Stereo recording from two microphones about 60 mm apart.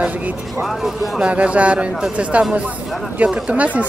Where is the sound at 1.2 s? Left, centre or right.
Right.